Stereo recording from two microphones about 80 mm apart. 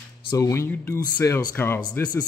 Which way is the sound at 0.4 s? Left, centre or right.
Left.